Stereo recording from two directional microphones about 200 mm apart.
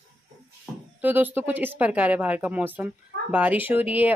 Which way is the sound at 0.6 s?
10° right (ahead or behind).